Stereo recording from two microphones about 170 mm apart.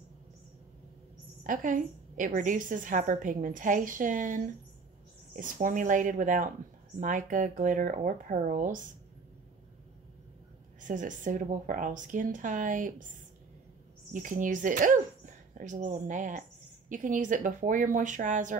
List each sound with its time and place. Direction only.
1.4 s a woman's voice: 50° right (ahead or behind)
10.8 s a woman's voice: 50° right (ahead or behind)
14.1 s a woman's voice: 50° right (ahead or behind)